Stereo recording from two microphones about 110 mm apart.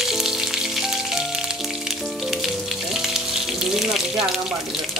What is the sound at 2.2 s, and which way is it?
Music, 5° right (ahead or behind).